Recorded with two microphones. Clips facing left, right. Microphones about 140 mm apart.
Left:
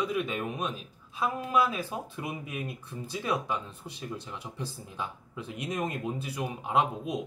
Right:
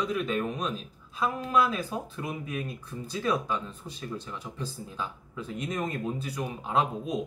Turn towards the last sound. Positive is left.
turn(degrees=10)  # may be behind; listen again after turning